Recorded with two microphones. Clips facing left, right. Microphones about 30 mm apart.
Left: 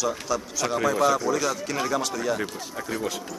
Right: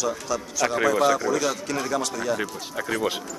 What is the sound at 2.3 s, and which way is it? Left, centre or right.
Speech, right.